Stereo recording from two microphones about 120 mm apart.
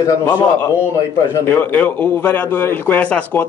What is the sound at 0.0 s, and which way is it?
Speech, 20° left (ahead or behind).